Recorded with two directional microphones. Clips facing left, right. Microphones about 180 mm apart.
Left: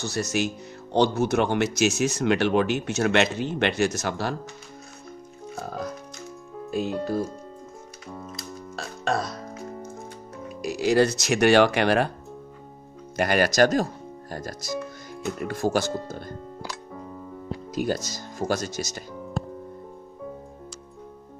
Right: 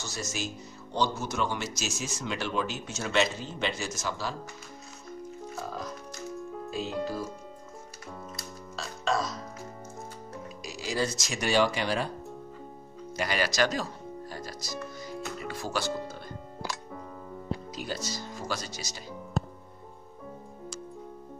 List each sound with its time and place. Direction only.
0.0 s speech: 65° left (ahead or behind)
6.7 s speech: 55° left (ahead or behind)
8.7 s music: 60° left (ahead or behind)
10.6 s speech: 60° left (ahead or behind)
13.1 s speech: 55° left (ahead or behind)
17.7 s speech: 45° left (ahead or behind)